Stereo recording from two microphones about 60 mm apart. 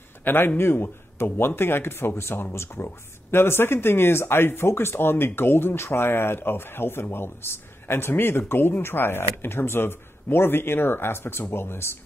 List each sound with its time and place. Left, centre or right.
0.2 s a man's voice: left